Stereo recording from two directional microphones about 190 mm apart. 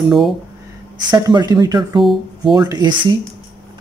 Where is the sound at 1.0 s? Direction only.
20° right (ahead or behind).